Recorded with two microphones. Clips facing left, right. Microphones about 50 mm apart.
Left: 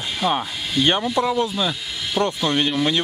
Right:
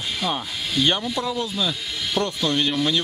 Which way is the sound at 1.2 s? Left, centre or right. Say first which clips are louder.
Left 4 dB; left.